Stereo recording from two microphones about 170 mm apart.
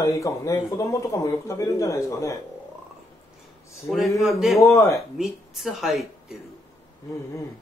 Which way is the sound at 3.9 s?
Centre (ahead or behind).